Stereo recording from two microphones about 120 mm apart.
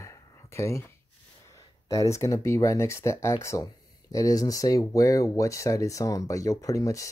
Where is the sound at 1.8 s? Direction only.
25° left (ahead or behind).